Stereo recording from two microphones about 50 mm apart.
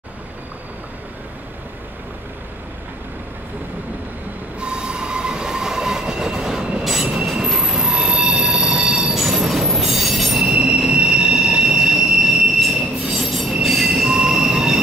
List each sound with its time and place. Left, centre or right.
4.6 s train: right; by 10.4 s centre
10.4 s train wheels squealing: centre
13.6 s train: centre
14.0 s train: centre